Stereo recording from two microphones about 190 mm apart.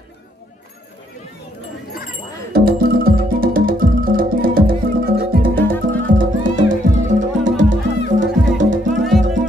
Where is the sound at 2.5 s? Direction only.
50° right (ahead or behind).